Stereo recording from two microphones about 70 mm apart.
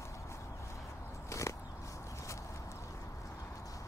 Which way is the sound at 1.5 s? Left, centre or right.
Left.